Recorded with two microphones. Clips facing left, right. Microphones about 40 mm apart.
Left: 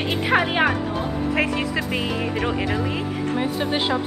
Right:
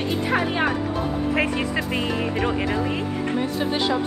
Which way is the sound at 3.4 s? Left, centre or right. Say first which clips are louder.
Left 1 dB; left.